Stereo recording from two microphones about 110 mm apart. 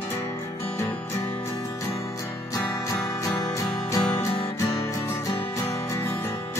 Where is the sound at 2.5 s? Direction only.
30° left (ahead or behind).